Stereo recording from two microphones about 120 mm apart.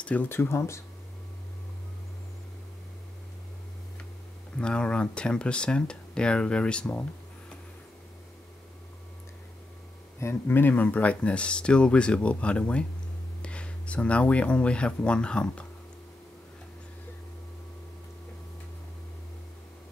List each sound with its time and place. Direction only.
0.0 s speech: 15° left (ahead or behind)
4.6 s speech: 10° left (ahead or behind)
10.2 s speech: 15° left (ahead or behind)